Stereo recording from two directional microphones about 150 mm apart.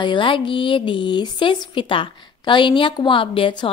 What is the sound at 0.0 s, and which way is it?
A woman's voice, 35° left (ahead or behind).